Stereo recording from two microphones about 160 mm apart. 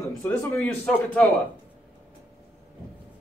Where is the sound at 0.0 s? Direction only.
15° left (ahead or behind).